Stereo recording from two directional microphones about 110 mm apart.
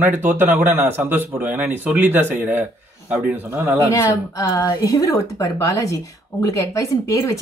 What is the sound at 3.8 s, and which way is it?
Speech, 30° left (ahead or behind).